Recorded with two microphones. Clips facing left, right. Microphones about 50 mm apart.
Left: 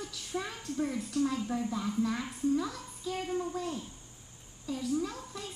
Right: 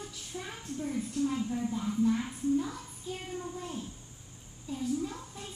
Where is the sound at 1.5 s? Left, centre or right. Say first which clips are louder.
Even; left.